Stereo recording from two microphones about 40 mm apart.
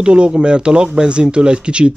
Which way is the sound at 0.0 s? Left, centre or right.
Right.